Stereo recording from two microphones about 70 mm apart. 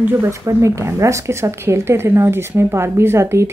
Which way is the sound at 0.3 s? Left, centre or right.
Right.